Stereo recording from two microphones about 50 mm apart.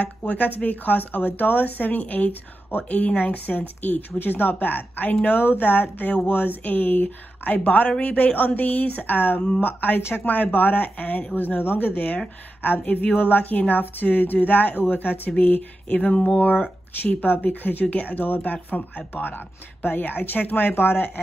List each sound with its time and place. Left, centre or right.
0.3 s a woman's voice: left
16.1 s a woman's voice: left